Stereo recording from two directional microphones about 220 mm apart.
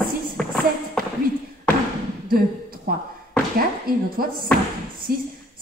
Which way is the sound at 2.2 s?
40° right (ahead or behind).